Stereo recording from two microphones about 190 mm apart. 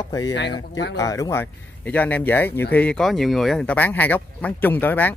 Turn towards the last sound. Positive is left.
turn(degrees=10)  # may be behind; listen again after turning